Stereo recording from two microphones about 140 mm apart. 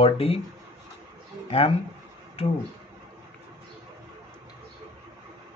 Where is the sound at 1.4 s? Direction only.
40° left (ahead or behind).